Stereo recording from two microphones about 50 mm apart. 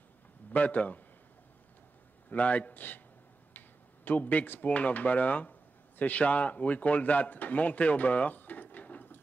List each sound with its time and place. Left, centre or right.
0.5 s a man's voice: left
2.2 s a man's voice: left